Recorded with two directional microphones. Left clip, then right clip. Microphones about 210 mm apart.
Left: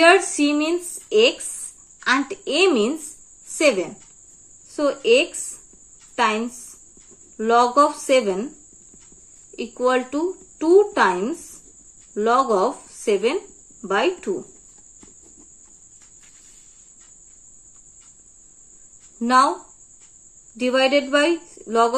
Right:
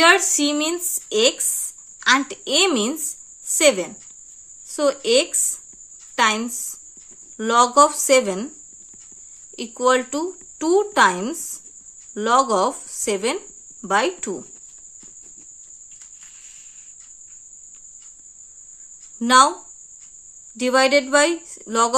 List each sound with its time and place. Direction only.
0.0 s a woman's voice: 25° right (ahead or behind)
9.6 s speech: 30° right (ahead or behind)
19.1 s speech: 30° right (ahead or behind)
20.5 s speech: 30° right (ahead or behind)